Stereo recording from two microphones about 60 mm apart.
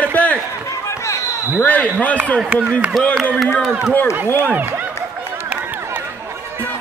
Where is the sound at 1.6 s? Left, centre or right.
Left.